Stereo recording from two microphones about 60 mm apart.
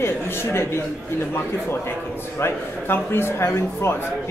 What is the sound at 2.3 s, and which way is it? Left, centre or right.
A man's voice, left.